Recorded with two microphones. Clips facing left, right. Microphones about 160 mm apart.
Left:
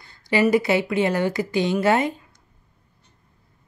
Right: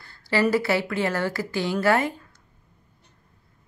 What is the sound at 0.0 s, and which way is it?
A woman's voice, 20° left (ahead or behind).